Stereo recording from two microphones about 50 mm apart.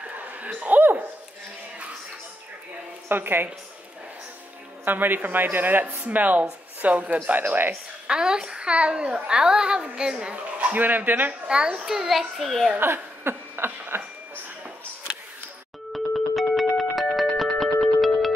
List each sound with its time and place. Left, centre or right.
0.0 s a sound: right
3.1 s a woman's voice: right
4.8 s a man's voice: right
8.1 s a child's voice: centre
10.3 s a man's voice: right
11.4 s a child's voice: centre
12.7 s a sound: right
15.9 s music: centre